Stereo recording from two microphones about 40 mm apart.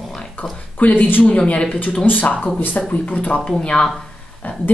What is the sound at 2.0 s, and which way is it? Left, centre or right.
Speech, left.